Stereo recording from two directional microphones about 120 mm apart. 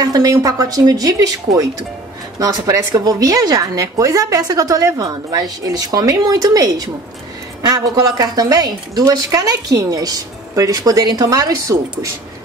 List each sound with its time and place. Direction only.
0.0 s a woman's voice: 30° right (ahead or behind)